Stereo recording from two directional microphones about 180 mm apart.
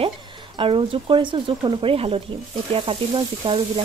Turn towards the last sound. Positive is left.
turn(degrees=-30)  # may be behind; listen again after turning